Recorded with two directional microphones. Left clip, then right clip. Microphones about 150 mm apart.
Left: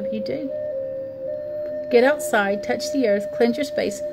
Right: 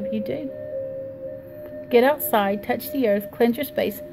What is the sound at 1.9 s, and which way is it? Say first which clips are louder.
A woman's voice: left 1 dB; 20° left (ahead or behind).